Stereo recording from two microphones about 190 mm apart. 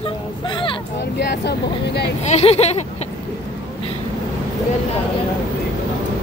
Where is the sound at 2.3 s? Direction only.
35° left (ahead or behind).